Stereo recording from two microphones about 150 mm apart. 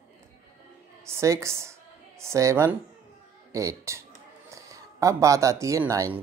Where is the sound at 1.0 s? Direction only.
20° right (ahead or behind).